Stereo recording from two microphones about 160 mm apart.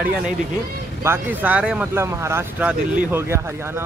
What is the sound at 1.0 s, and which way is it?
Speech, 10° right (ahead or behind).